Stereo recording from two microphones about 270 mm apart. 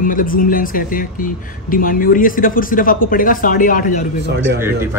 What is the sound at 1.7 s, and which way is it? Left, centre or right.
Speech, left.